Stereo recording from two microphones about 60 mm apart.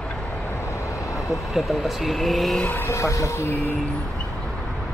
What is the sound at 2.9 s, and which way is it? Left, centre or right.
Speech, left.